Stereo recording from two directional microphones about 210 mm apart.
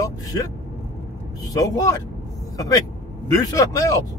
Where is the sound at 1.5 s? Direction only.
15° left (ahead or behind).